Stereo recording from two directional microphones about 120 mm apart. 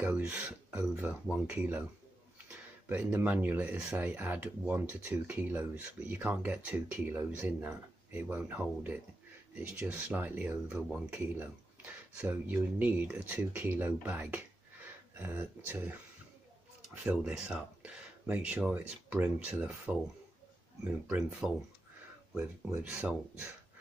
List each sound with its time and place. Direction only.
0.0 s speech: 15° right (ahead or behind)
11.1 s speech: 15° right (ahead or behind)
22.7 s speech: 15° right (ahead or behind)